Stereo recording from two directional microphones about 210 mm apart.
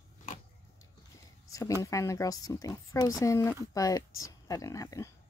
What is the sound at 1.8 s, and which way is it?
Speech, 15° left (ahead or behind).